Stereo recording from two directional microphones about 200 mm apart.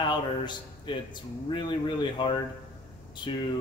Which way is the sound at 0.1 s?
25° left (ahead or behind).